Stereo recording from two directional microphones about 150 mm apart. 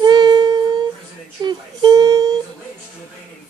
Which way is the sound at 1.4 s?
30° right (ahead or behind).